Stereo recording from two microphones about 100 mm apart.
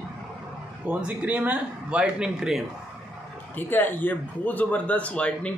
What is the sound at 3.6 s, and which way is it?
A man's voice, 20° left (ahead or behind).